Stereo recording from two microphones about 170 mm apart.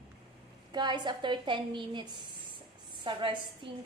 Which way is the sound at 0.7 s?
25° right (ahead or behind).